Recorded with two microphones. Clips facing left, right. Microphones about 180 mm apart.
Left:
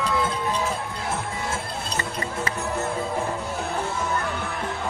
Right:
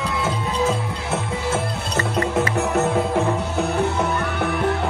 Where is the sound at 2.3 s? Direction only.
75° right (ahead or behind).